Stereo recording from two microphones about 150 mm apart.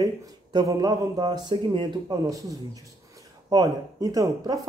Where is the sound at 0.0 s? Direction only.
25° right (ahead or behind).